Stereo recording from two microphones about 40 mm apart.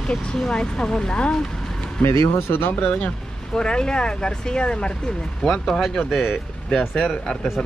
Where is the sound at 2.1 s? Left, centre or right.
Left.